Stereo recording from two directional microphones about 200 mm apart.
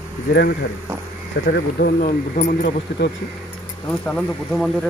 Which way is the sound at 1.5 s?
55° left (ahead or behind).